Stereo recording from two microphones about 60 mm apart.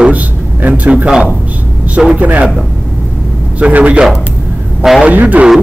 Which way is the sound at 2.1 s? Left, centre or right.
Right.